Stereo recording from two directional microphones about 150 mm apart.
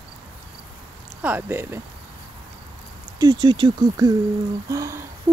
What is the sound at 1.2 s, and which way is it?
Speech, 10° right (ahead or behind).